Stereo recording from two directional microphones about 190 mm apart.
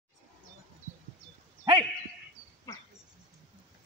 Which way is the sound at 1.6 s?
25° right (ahead or behind).